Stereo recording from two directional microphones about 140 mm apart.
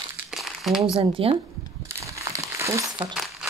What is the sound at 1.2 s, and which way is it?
Speech, 40° right (ahead or behind).